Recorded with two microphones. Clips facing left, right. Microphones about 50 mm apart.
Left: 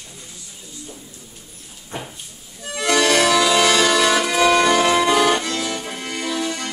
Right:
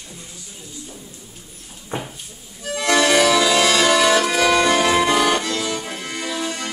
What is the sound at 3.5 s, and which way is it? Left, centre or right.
Music, left.